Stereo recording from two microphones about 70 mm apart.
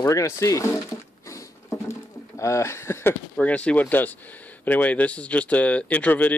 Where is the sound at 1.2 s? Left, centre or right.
Left.